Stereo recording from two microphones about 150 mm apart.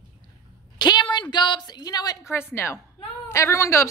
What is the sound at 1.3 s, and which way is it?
Speech, 30° left (ahead or behind).